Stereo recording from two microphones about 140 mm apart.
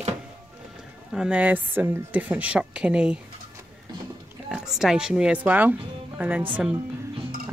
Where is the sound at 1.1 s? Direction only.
5° right (ahead or behind).